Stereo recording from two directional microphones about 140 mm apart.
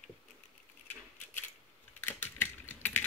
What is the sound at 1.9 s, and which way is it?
Typing, 15° left (ahead or behind).